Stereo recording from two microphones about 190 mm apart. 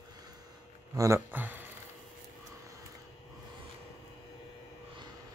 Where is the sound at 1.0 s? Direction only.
15° right (ahead or behind).